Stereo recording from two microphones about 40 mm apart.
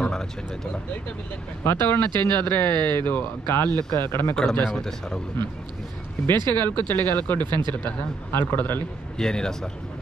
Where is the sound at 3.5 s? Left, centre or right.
Left.